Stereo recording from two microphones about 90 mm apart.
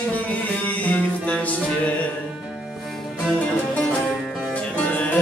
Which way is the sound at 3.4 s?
15° left (ahead or behind).